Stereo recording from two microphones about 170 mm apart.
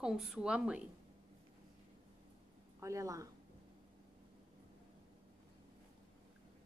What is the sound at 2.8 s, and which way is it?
Speech, 20° right (ahead or behind).